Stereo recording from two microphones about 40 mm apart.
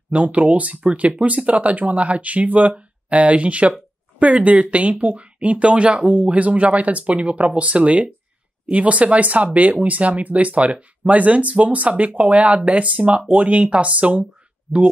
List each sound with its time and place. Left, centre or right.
0.1 s speech: right